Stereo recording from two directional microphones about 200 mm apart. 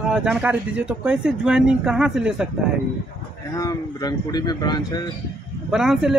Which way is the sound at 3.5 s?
20° left (ahead or behind).